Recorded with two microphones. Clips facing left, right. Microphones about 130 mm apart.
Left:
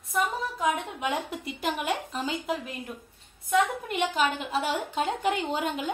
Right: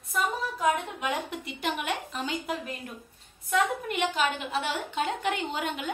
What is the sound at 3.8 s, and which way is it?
A woman's voice, 35° left (ahead or behind).